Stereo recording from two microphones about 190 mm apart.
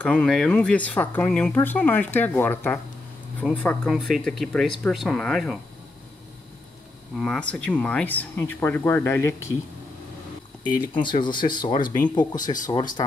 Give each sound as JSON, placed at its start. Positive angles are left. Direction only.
{"t": 0.0, "sound": "speech", "side_deg": 5}
{"t": 7.2, "sound": "speech", "side_deg": 5}
{"t": 10.9, "sound": "speech", "side_deg": 25}